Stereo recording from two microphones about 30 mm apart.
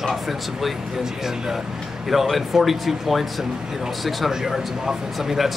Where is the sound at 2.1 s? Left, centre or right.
Centre.